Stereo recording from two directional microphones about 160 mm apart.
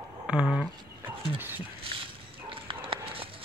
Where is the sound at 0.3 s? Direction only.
5° right (ahead or behind).